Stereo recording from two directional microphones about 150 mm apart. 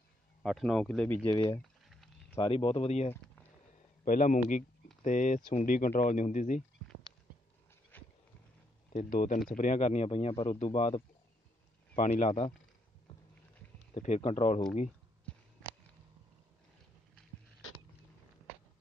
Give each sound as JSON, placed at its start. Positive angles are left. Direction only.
{"t": 0.4, "sound": "speech", "side_deg": 0}
{"t": 1.9, "sound": "a sound", "side_deg": 0}
{"t": 2.4, "sound": "speech", "side_deg": 40}
{"t": 4.0, "sound": "speech", "side_deg": 65}
{"t": 7.9, "sound": "a sound", "side_deg": 10}
{"t": 8.9, "sound": "speech", "side_deg": 60}
{"t": 11.9, "sound": "speech", "side_deg": 60}
{"t": 12.3, "sound": "speech", "side_deg": 45}
{"t": 13.9, "sound": "speech", "side_deg": 45}